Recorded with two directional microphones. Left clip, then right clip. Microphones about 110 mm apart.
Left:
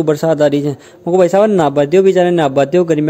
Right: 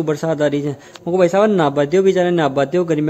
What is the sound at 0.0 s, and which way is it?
A man's voice, 30° left (ahead or behind).